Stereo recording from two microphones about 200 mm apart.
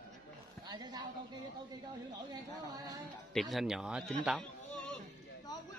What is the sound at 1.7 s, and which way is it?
Speech, 20° right (ahead or behind).